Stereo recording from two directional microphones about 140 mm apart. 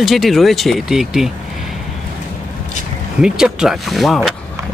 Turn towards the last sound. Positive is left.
turn(degrees=0)  # may be behind; listen again after turning